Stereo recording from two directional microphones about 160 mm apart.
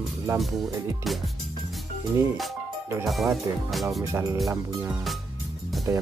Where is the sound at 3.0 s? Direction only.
Centre (ahead or behind).